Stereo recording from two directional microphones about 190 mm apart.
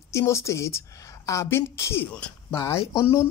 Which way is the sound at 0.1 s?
15° left (ahead or behind).